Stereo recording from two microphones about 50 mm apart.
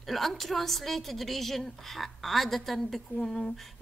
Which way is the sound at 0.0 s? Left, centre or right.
Centre.